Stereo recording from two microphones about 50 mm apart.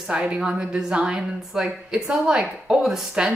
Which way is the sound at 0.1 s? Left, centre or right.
Right.